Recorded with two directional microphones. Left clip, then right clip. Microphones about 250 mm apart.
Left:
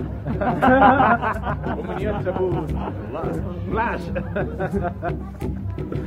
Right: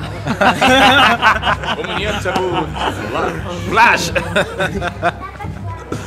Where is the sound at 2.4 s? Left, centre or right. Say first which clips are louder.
Right 7 dB; centre.